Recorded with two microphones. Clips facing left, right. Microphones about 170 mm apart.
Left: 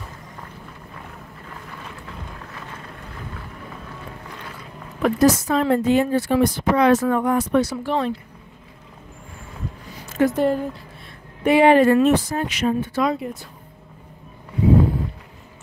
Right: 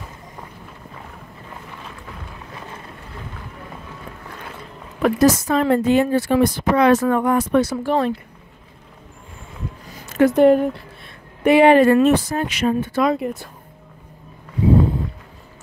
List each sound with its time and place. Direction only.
5.0 s speech: 65° right (ahead or behind)
10.1 s speech: 65° right (ahead or behind)